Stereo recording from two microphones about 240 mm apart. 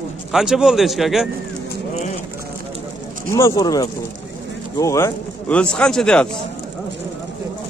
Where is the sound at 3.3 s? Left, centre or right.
Centre.